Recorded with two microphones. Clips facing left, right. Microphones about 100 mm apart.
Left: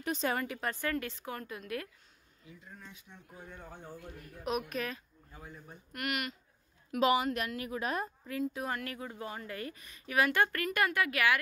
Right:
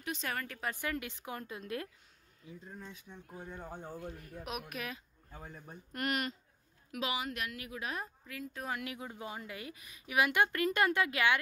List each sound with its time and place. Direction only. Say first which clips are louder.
0.0 s a woman's voice: left 6 dB; 35° left (ahead or behind)
0.3 s a woman's voice: left 5 dB; 15° left (ahead or behind)
0.7 s a woman's voice: left 3 dB; 15° right (ahead or behind)
3.4 s speech: right 3 dB; 30° right (ahead or behind)
4.5 s a woman's voice: left 7 dB; 5° right (ahead or behind)
5.9 s speech: right 1 dB; 35° right (ahead or behind)
6.9 s a woman's voice: left 9 dB; 45° left (ahead or behind)
8.6 s a woman's voice: left 2 dB; 10° right (ahead or behind)